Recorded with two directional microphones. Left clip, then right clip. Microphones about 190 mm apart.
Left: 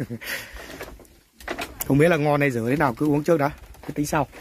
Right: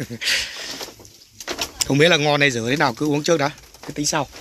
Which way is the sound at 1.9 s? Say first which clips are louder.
Right 3 dB; 5° left (ahead or behind).